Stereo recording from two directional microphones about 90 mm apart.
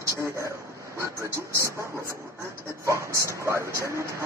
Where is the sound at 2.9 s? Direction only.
30° right (ahead or behind).